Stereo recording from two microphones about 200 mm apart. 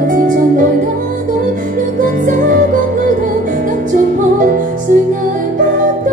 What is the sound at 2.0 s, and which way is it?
Music, 45° right (ahead or behind).